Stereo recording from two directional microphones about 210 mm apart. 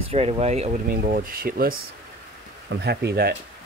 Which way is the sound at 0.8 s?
40° right (ahead or behind).